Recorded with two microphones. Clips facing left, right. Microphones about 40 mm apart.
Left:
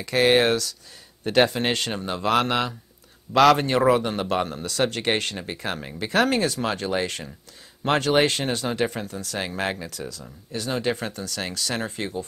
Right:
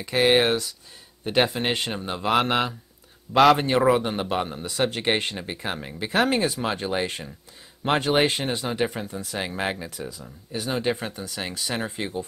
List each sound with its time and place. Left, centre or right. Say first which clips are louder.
0.0 s speech: left 1 dB; centre
9.5 s speech: even; centre
9.8 s speech: even; right